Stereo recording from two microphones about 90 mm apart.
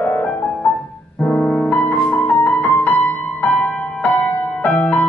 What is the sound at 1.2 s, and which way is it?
Piano, 10° left (ahead or behind).